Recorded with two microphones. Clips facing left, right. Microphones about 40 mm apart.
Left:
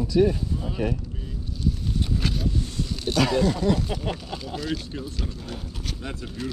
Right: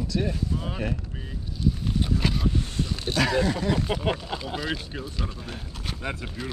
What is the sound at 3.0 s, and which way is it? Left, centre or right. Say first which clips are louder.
Speech: left 2 dB; centre.